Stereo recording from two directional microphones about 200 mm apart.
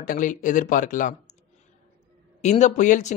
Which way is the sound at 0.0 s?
40° left (ahead or behind).